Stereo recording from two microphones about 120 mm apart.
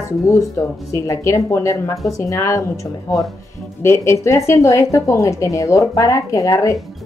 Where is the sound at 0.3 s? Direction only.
25° left (ahead or behind).